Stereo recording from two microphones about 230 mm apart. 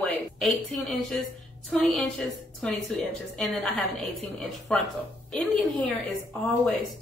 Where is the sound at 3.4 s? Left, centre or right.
Centre.